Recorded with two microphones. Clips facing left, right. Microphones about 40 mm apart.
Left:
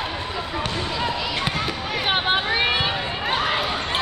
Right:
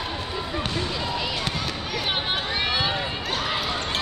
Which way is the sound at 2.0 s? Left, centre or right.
Left.